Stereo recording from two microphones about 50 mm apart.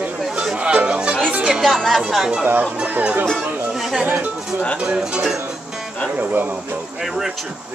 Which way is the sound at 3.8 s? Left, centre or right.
Centre.